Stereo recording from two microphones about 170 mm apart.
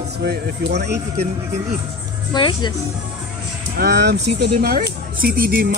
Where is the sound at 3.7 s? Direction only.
70° right (ahead or behind).